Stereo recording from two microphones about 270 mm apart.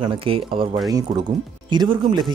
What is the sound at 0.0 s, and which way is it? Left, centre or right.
A man's voice, centre.